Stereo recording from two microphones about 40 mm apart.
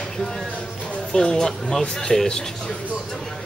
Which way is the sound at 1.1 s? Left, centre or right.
Centre.